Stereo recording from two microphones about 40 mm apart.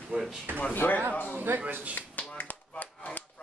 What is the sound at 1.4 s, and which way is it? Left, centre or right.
Speech, right.